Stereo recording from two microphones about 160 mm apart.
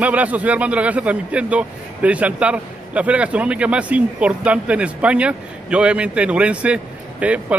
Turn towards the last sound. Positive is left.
turn(degrees=-10)  # may be behind; listen again after turning